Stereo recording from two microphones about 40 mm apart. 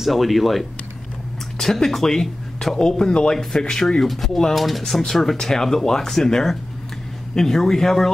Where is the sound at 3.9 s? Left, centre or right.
Centre.